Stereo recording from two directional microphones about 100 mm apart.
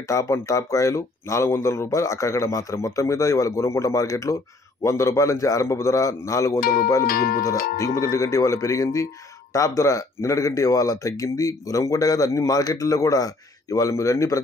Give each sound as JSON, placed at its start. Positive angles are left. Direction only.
{"t": 0.1, "sound": "speech", "side_deg": 30}